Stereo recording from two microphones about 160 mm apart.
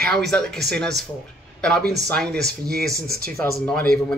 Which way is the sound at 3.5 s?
5° left (ahead or behind).